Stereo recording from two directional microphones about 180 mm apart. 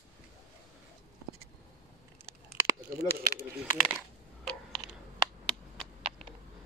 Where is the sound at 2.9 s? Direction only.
60° right (ahead or behind).